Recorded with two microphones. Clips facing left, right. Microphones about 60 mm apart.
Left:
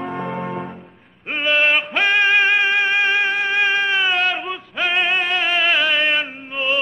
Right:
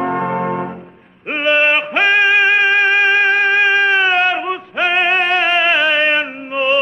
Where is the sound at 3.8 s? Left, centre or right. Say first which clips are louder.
Right 5 dB; right.